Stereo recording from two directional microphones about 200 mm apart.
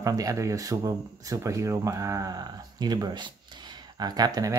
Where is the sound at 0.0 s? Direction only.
15° right (ahead or behind).